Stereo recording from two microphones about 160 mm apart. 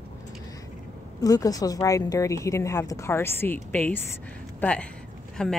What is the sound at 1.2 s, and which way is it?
A woman's voice, 20° left (ahead or behind).